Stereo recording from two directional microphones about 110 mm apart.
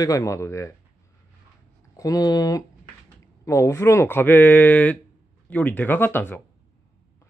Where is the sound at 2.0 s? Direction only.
35° left (ahead or behind); by 6.3 s 15° left (ahead or behind).